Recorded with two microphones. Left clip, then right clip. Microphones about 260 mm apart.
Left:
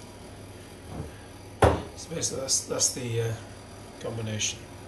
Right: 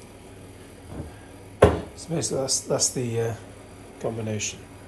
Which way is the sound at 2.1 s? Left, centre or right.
Centre.